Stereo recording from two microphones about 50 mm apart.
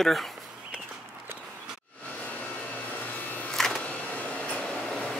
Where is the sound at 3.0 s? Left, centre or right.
Left.